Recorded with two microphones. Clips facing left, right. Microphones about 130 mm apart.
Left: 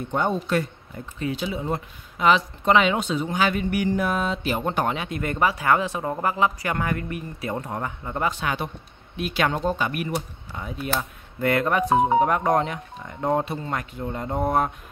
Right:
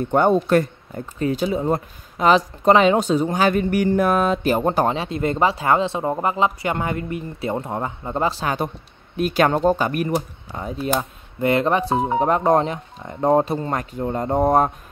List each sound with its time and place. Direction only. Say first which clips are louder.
0.1 s speech: right 7 dB; 55° right (ahead or behind); by 10.9 s 35° right (ahead or behind)
11.0 s speech: right 4 dB; 20° right (ahead or behind); by 14.7 s 40° right (ahead or behind)